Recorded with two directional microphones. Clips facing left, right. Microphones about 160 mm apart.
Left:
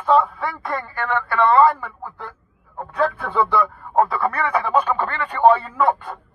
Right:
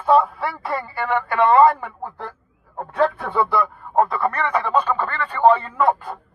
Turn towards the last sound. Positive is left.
turn(degrees=0)  # may be behind; listen again after turning